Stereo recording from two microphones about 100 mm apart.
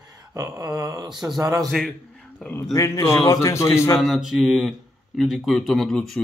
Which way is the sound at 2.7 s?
35° left (ahead or behind).